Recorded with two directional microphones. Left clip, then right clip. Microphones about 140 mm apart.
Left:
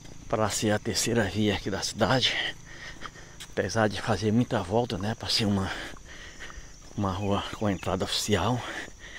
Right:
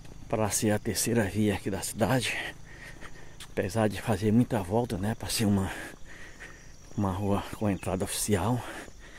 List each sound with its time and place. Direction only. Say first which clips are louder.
0.3 s speech: left 2 dB; 35° right (ahead or behind)
7.0 s speech: left 2 dB; 30° right (ahead or behind)